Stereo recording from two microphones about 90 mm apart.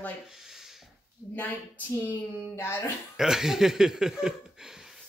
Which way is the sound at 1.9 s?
30° left (ahead or behind).